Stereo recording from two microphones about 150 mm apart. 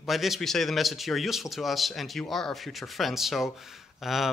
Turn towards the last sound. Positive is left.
turn(degrees=0)  # may be behind; listen again after turning